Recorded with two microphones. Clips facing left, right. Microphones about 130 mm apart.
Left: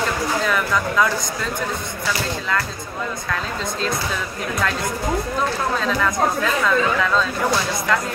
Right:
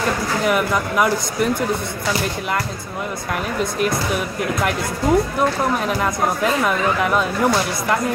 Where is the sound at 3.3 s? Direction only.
15° right (ahead or behind).